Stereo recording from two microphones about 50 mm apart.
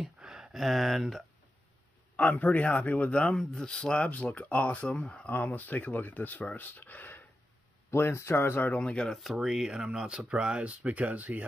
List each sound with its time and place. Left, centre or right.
0.0 s a sound: centre
2.1 s a man's voice: left
3.1 s speech: left
7.9 s speech: left
8.6 s speech: left
9.0 s speech: centre; by 11.4 s right